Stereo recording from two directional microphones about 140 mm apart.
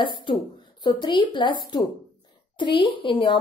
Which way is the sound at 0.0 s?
35° left (ahead or behind).